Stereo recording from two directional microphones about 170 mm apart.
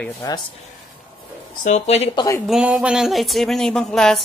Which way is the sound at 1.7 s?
40° left (ahead or behind).